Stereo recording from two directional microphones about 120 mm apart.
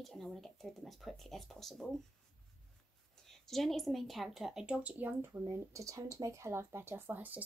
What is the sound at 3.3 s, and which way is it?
Speech, centre (ahead or behind).